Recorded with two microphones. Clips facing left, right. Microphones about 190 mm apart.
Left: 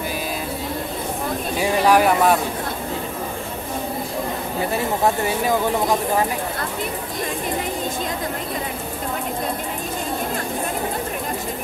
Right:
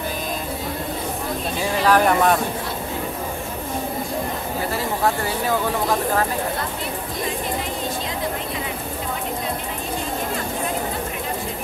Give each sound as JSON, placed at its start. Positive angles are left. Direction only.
{"t": 1.6, "sound": "speech", "side_deg": 10}
{"t": 4.7, "sound": "speech", "side_deg": 20}